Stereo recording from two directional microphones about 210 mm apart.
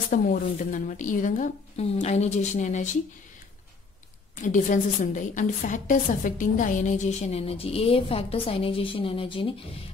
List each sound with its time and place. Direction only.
0.1 s a woman's voice: 40° left (ahead or behind)
4.4 s a woman's voice: 40° left (ahead or behind)